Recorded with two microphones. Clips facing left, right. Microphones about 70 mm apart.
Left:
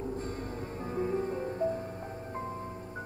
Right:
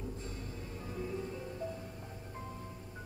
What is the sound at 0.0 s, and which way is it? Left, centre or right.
Music, left.